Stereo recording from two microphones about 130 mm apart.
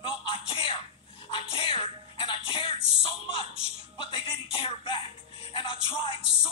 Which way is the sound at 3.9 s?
40° left (ahead or behind).